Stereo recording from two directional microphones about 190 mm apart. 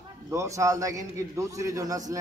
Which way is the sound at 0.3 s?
15° right (ahead or behind).